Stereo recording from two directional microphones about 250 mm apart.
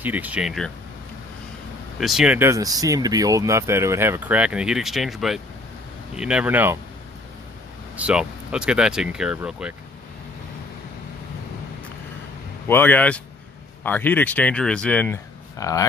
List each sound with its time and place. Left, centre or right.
0.0 s speech: centre
2.0 s speech: centre
7.9 s speech: centre
12.6 s speech: centre